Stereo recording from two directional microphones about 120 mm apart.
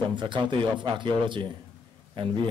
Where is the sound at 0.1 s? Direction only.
40° right (ahead or behind).